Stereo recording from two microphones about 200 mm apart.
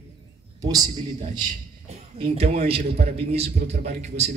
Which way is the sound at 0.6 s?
20° right (ahead or behind).